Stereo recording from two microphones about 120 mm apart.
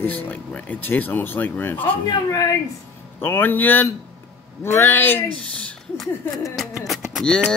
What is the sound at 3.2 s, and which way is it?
Speech, 15° left (ahead or behind).